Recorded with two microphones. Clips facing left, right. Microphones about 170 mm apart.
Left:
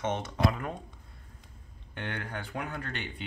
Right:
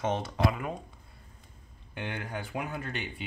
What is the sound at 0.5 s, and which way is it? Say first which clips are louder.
Speech: right 1 dB; 5° right (ahead or behind).